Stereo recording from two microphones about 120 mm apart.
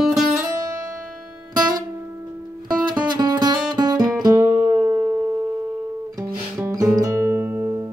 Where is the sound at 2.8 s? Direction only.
40° right (ahead or behind); by 5.2 s 20° right (ahead or behind).